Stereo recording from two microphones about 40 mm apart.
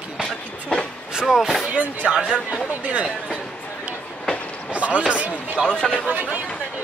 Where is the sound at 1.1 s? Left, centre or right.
Centre.